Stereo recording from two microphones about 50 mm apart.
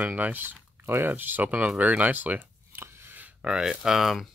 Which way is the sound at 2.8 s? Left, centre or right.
Right.